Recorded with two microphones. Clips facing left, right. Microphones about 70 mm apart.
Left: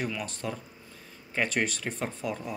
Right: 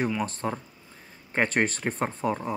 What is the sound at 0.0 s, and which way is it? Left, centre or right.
Speech, right.